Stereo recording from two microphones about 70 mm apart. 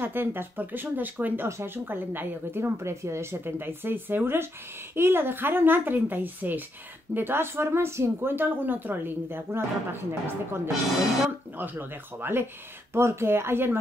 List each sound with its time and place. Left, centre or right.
0.0 s a woman's voice: right